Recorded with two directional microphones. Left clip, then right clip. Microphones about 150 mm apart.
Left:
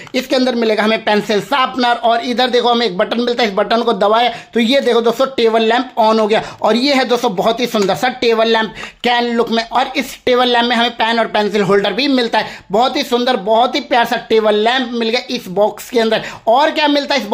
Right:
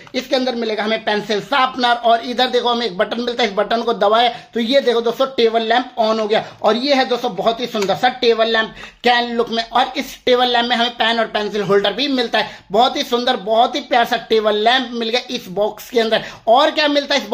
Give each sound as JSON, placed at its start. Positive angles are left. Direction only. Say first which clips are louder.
{"t": 0.1, "sound": "speech", "louder": "left 4 dB", "side_deg": 40}